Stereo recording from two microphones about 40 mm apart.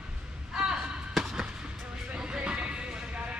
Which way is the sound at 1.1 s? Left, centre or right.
Centre.